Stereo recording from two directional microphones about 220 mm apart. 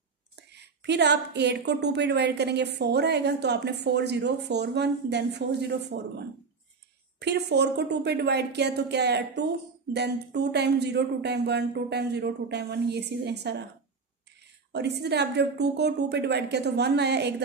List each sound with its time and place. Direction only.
0.4 s a woman's voice: 50° right (ahead or behind)
7.2 s a woman's voice: 50° right (ahead or behind)
14.7 s a woman's voice: 50° right (ahead or behind)